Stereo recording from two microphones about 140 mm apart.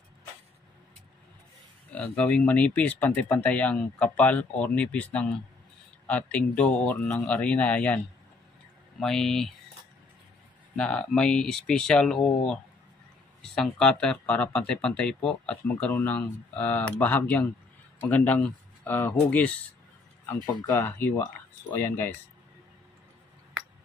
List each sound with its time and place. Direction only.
1.9 s speech: 10° left (ahead or behind)
9.0 s speech: 5° left (ahead or behind)
10.8 s speech: 5° left (ahead or behind)
13.4 s speech: 5° left (ahead or behind)
20.6 s speech: 25° left (ahead or behind)